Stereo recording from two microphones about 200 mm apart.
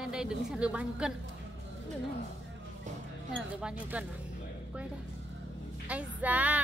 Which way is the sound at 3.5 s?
5° right (ahead or behind).